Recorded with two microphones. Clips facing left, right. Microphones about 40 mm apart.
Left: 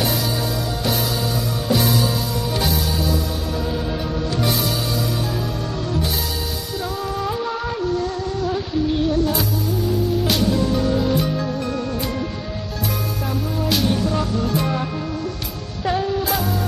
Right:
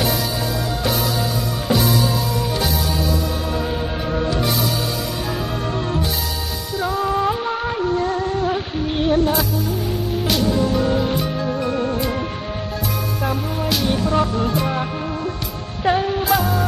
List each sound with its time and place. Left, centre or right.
0.8 s music: centre
2.5 s music: centre
3.5 s music: right
4.3 s music: centre
7.0 s music: right
9.3 s music: centre
10.5 s music: right
11.2 s music: centre
13.2 s music: right
15.8 s music: right
16.3 s music: centre